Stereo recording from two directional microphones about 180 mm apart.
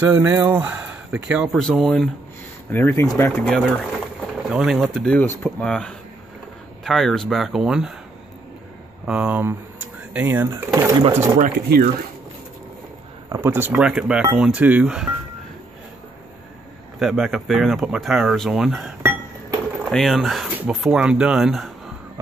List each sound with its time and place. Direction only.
0.0 s speech: 10° right (ahead or behind); by 3.4 s 15° left (ahead or behind)
3.4 s speech: 5° left (ahead or behind)
9.0 s speech: 5° right (ahead or behind); by 11.1 s 20° right (ahead or behind)
11.5 s speech: 60° right (ahead or behind)
13.3 s speech: 15° right (ahead or behind)
17.0 s speech: centre (ahead or behind)
19.0 s chink: 10° right (ahead or behind)
19.9 s speech: centre (ahead or behind)